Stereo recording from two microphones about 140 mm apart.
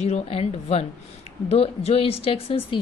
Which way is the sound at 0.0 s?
50° left (ahead or behind).